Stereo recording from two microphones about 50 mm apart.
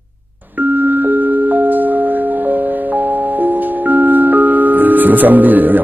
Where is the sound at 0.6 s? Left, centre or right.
Right.